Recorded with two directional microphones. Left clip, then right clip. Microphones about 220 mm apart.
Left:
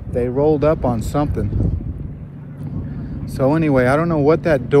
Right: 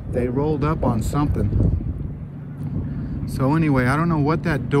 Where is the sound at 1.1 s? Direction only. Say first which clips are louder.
Left 3 dB; centre (ahead or behind).